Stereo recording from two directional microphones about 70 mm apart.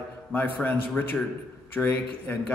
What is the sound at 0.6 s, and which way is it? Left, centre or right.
A man's voice, left.